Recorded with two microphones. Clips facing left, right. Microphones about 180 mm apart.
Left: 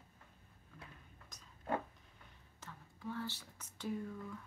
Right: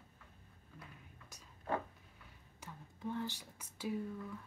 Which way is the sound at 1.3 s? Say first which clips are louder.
Right 1 dB; 10° right (ahead or behind).